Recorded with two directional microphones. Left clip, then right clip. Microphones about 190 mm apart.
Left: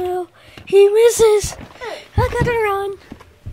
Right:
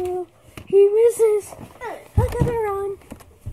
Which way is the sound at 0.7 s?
5° left (ahead or behind).